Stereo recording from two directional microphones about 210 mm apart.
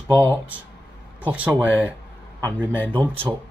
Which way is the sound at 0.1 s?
10° right (ahead or behind).